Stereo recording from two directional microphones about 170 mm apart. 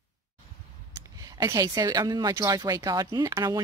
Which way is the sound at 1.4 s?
20° right (ahead or behind).